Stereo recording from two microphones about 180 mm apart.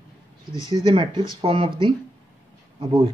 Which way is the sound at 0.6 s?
25° right (ahead or behind).